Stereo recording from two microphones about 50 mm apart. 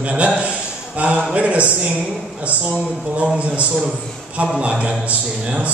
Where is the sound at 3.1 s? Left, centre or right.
Right.